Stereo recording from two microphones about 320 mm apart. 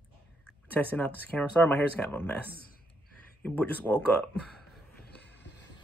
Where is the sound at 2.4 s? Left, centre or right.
Left.